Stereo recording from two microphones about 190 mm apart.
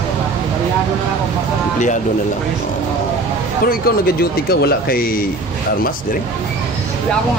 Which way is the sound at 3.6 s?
55° left (ahead or behind).